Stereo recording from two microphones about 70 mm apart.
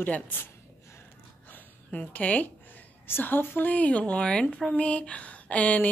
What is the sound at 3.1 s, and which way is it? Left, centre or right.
A woman's voice, left.